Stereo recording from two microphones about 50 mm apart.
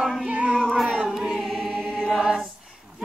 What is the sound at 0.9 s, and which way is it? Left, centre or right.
Chant, centre.